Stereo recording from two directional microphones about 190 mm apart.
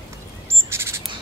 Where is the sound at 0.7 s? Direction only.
15° right (ahead or behind).